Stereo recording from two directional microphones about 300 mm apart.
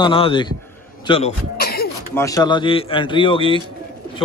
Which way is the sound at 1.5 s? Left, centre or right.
Left.